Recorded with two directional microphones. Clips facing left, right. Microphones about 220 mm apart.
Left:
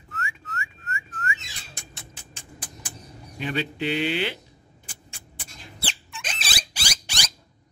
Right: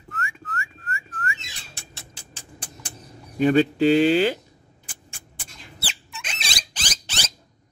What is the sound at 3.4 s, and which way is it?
Speech, 45° right (ahead or behind).